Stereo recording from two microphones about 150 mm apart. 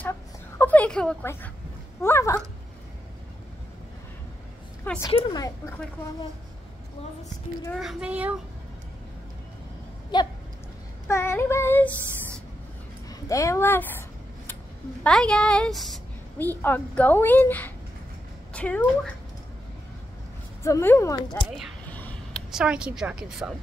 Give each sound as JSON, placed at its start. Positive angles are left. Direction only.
{"t": 0.6, "sound": "a sound", "side_deg": 10}
{"t": 1.2, "sound": "speech", "side_deg": 15}
{"t": 4.8, "sound": "a woman's voice", "side_deg": 15}
{"t": 7.8, "sound": "a child's voice", "side_deg": -5}
{"t": 10.1, "sound": "a woman's voice", "side_deg": 30}
{"t": 11.1, "sound": "child singing", "side_deg": 15}
{"t": 13.1, "sound": "speech", "side_deg": 20}
{"t": 15.0, "sound": "a woman's voice", "side_deg": 5}
{"t": 16.3, "sound": "speech", "side_deg": 10}
{"t": 20.6, "sound": "a woman's voice", "side_deg": 15}
{"t": 21.8, "sound": "a sound", "side_deg": 10}
{"t": 22.5, "sound": "a woman's voice", "side_deg": -5}